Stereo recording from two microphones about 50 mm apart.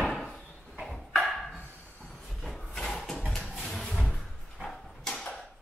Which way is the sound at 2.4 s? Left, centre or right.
Centre.